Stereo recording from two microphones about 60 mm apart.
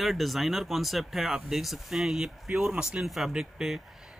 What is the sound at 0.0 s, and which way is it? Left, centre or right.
Speech, centre.